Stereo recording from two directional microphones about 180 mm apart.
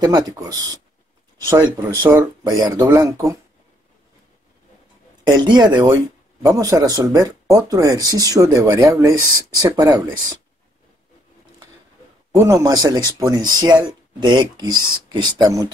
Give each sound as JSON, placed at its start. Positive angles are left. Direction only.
{"t": 0.0, "sound": "speech", "side_deg": -20}
{"t": 5.2, "sound": "speech", "side_deg": -25}
{"t": 12.4, "sound": "speech", "side_deg": -15}